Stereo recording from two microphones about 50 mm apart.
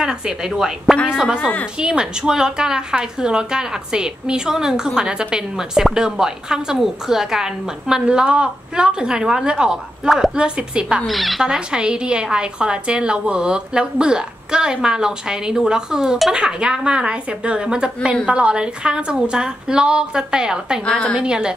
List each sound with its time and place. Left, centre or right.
0.0 s a woman's voice: centre
10.3 s a woman's voice: centre
11.1 s speech: centre
11.4 s a woman's voice: centre